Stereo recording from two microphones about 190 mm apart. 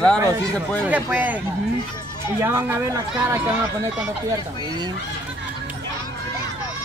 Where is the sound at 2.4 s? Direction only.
10° right (ahead or behind).